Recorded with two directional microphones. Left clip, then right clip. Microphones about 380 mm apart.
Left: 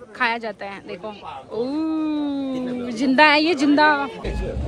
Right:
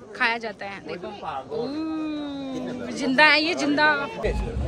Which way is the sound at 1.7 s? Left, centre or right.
Centre.